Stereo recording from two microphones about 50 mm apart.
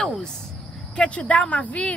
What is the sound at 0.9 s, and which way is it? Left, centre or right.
Speech, left.